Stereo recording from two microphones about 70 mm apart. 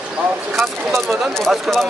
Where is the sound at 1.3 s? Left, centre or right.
Centre.